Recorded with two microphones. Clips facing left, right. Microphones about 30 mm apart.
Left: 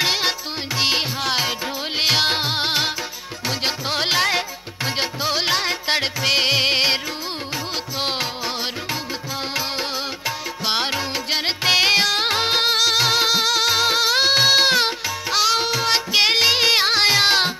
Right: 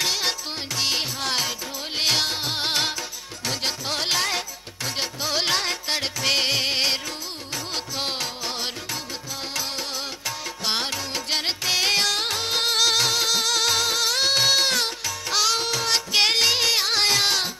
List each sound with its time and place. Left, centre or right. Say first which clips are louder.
0.0 s music: left 4 dB; left
2.2 s music: left 6 dB; left
2.5 s music: left 3 dB; centre
5.3 s music: left 2 dB; centre
8.0 s music: left 5 dB; left
9.6 s music: left 4 dB; left
11.6 s music: left 7 dB; left
12.7 s music: left 3 dB; centre
13.1 s music: left 4 dB; left